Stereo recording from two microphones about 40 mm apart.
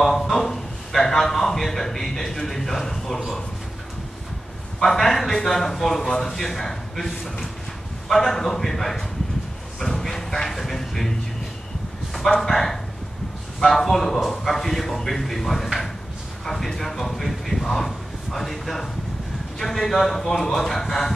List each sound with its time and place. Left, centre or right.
0.0 s a man's voice: centre
4.7 s speech: centre
6.0 s speech: centre
6.3 s speech: centre
9.8 s a sound: centre
12.1 s speech: centre